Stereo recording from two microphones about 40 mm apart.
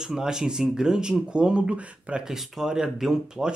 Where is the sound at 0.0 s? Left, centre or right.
Centre; by 2.2 s right.